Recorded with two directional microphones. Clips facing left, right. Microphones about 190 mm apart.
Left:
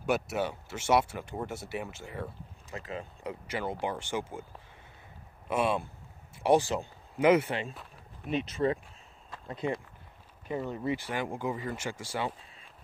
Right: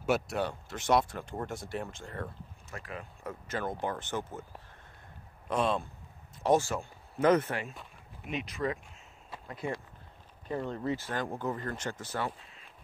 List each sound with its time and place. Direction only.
0.0 s speech: centre (ahead or behind)
2.7 s speech: 25° left (ahead or behind)
3.4 s speech: 10° left (ahead or behind)
5.5 s speech: 10° left (ahead or behind)
8.3 s speech: 30° left (ahead or behind)
10.5 s speech: 10° left (ahead or behind)